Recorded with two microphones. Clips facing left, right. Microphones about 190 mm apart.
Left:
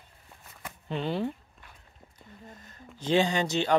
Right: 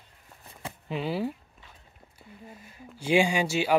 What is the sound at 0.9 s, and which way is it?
Speech, 5° right (ahead or behind).